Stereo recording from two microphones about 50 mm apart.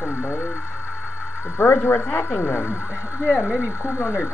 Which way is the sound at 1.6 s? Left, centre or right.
Left.